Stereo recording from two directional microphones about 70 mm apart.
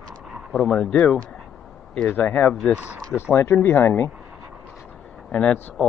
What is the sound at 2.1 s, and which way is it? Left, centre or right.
Speech, left.